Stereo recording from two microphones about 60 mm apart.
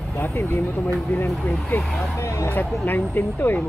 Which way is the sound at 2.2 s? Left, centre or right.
Left.